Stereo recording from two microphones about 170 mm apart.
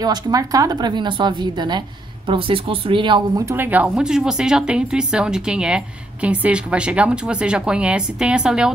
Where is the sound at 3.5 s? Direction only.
10° right (ahead or behind).